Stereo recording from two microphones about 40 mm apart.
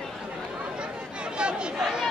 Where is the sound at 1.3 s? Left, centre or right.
Right.